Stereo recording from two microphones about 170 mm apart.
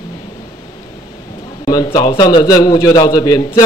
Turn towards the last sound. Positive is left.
turn(degrees=25)  # may be behind; listen again after turning